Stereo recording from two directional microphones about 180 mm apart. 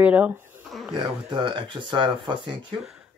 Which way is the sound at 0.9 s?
30° right (ahead or behind).